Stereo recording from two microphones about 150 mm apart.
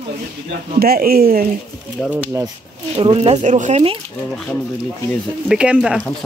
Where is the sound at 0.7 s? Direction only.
90° right.